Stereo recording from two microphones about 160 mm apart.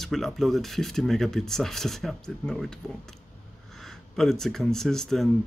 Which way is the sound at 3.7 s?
Centre (ahead or behind).